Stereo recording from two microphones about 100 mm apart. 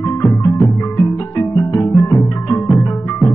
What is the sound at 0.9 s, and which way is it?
Music, 25° left (ahead or behind).